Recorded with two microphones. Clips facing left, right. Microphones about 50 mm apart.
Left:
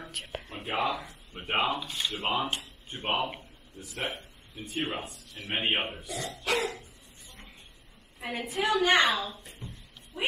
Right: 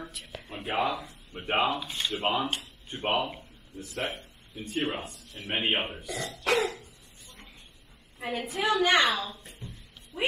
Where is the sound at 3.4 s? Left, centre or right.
Centre.